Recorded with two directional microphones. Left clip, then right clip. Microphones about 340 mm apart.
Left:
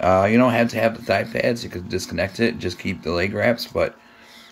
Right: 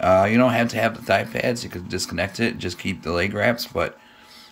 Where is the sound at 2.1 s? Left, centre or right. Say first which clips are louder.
Left 3 dB; centre.